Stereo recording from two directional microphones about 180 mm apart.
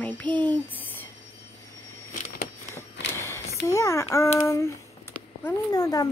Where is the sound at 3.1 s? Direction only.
15° left (ahead or behind).